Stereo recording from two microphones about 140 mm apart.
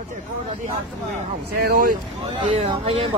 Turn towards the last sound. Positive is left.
turn(degrees=-45)  # may be behind; listen again after turning